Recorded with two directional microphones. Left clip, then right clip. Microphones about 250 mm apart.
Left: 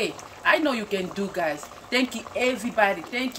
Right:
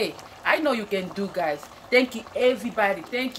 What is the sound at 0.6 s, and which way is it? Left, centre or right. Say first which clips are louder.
Speech: right 1 dB; centre.